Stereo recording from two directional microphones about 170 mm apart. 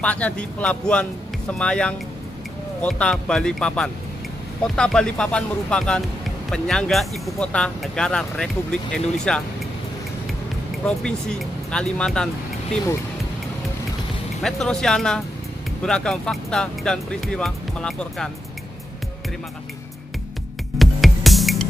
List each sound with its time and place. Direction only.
0.0 s speech: 5° left (ahead or behind)
10.9 s speech: 5° left (ahead or behind)
14.4 s speech: 5° left (ahead or behind)
20.7 s music: centre (ahead or behind)